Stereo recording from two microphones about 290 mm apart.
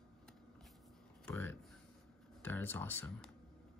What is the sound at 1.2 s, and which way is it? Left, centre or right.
Speech, centre.